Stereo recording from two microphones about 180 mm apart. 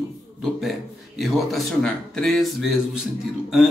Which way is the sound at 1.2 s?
Centre (ahead or behind).